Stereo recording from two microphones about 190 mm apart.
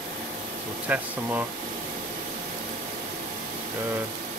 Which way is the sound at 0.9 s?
10° right (ahead or behind).